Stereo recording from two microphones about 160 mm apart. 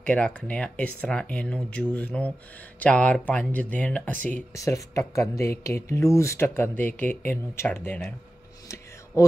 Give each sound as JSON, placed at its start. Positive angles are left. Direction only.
{"t": 0.0, "sound": "speech", "side_deg": 5}
{"t": 4.3, "sound": "speech", "side_deg": 20}
{"t": 9.1, "sound": "mantra", "side_deg": 20}